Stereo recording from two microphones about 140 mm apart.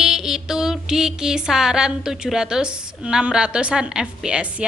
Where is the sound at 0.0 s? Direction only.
5° right (ahead or behind).